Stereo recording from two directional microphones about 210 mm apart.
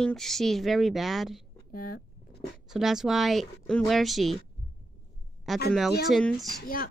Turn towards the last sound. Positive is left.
turn(degrees=45)  # may be behind; listen again after turning